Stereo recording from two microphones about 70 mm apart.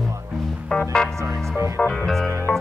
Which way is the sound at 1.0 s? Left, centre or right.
Right.